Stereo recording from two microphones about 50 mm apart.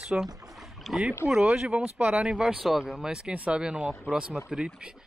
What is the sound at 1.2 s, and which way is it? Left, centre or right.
Speech, centre.